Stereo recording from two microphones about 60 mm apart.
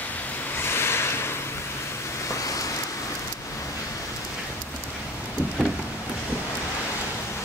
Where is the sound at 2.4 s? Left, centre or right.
Left.